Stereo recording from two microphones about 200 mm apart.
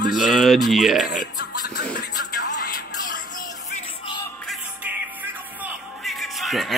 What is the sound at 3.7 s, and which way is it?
Music, 25° left (ahead or behind).